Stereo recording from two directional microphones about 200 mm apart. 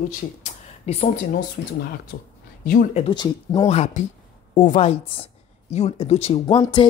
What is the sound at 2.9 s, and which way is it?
Speech, 35° left (ahead or behind).